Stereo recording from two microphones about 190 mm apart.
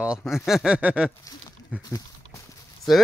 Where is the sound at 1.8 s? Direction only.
20° left (ahead or behind).